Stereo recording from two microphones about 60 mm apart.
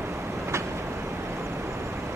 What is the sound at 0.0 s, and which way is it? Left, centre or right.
Vehicle, right.